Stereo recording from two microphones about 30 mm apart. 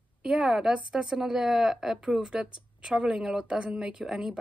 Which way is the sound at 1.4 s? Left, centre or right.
Centre.